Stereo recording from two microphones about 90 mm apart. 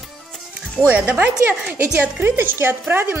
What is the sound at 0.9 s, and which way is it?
A woman's voice, 15° right (ahead or behind).